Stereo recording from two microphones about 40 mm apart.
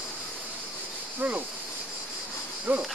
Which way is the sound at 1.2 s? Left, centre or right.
Right.